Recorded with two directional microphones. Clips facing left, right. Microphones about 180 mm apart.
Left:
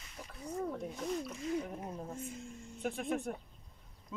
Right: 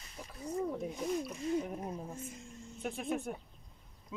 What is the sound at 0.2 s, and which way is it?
Snake, 10° right (ahead or behind).